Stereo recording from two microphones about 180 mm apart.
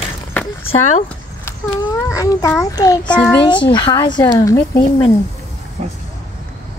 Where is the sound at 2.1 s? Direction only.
15° left (ahead or behind).